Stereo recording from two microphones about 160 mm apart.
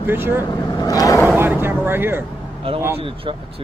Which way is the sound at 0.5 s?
20° left (ahead or behind).